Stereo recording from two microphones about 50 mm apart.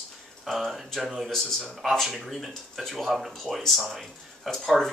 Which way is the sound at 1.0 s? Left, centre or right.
Centre.